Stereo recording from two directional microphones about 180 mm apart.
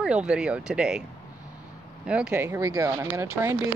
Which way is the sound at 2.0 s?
5° right (ahead or behind).